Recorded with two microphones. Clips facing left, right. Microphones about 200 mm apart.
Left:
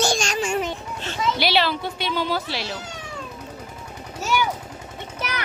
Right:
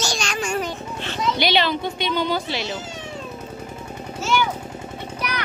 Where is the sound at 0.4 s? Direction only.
25° left (ahead or behind).